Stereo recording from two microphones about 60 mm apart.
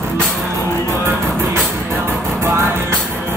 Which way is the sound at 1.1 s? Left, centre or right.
Right.